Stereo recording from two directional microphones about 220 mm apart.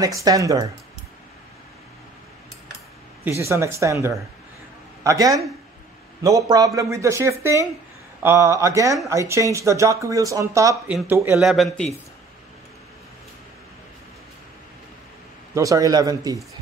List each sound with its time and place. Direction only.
0.0 s speech: 15° right (ahead or behind)
3.3 s speech: 10° right (ahead or behind)
15.5 s speech: 15° right (ahead or behind)